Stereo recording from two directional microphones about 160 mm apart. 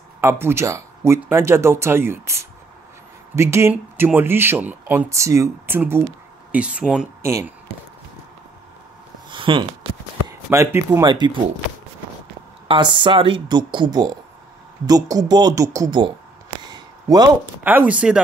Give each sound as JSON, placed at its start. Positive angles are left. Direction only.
{"t": 0.2, "sound": "speech", "side_deg": -15}
{"t": 7.2, "sound": "speech", "side_deg": -15}
{"t": 9.3, "sound": "a sound", "side_deg": -30}
{"t": 10.5, "sound": "speech", "side_deg": -20}
{"t": 12.6, "sound": "speech", "side_deg": -30}
{"t": 16.7, "sound": "a sound", "side_deg": -25}
{"t": 17.6, "sound": "speech", "side_deg": -10}